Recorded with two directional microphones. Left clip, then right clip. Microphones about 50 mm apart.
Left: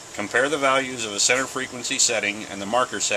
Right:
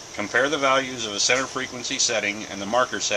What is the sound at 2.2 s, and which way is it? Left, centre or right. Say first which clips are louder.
Speech: left 1 dB; left.